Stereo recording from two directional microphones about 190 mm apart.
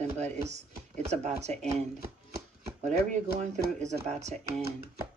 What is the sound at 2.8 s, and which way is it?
Speech, 40° right (ahead or behind).